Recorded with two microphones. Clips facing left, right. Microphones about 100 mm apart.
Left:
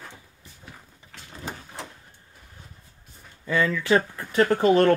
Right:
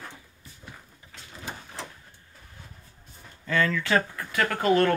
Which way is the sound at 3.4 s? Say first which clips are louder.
Left 3 dB; 15° left (ahead or behind).